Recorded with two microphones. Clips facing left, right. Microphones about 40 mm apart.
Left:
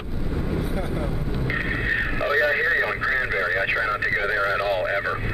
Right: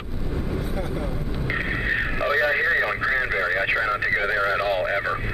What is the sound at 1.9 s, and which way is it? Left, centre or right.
Speech, centre.